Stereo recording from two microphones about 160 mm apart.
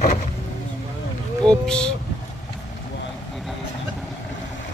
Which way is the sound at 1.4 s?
5° left (ahead or behind).